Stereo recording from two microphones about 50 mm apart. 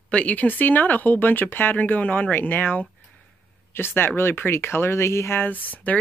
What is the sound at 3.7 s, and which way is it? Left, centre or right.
Speech, left.